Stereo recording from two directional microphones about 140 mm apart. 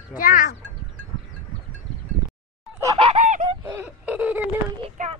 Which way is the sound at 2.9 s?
45° right (ahead or behind).